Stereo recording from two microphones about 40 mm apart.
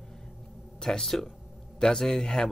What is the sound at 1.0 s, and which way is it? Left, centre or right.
Speech, centre.